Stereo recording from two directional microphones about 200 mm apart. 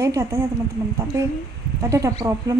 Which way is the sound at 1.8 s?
15° right (ahead or behind).